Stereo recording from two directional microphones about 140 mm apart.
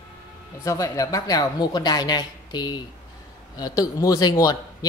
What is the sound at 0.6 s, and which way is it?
Speech, 25° left (ahead or behind).